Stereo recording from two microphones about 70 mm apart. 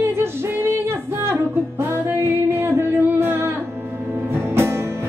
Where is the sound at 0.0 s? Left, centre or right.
Right.